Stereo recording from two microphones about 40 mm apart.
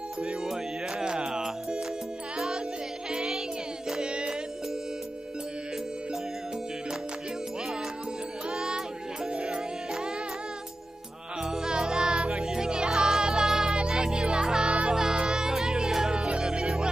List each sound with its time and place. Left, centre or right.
0.5 s music: centre
8.5 s music: centre
9.3 s music: right
11.4 s music: centre